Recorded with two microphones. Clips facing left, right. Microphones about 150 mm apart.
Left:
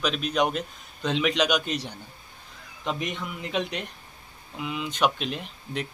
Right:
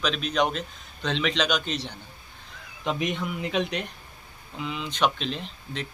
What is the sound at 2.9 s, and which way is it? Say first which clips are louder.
Speech: right 2 dB; centre (ahead or behind).